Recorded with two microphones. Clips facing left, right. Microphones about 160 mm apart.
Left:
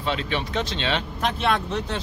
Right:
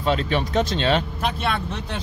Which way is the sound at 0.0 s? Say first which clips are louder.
Right 4 dB; 45° right (ahead or behind).